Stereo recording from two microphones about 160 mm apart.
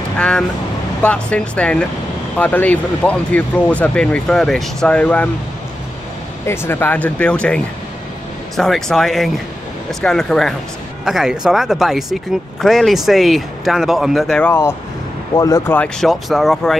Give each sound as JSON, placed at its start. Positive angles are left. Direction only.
{"t": 0.2, "sound": "speech", "side_deg": 5}
{"t": 6.4, "sound": "speech", "side_deg": 15}
{"t": 15.3, "sound": "speech", "side_deg": 20}
{"t": 15.7, "sound": "speech", "side_deg": 5}